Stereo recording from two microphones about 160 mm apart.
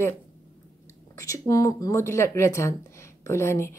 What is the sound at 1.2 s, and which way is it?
Speech, 20° left (ahead or behind).